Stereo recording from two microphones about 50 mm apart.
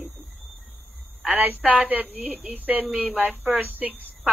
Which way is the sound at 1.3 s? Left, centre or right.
Right.